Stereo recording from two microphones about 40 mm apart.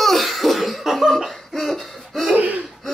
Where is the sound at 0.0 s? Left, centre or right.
Centre.